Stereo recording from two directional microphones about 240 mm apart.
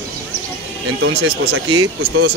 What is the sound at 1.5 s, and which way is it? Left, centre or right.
Speech, right.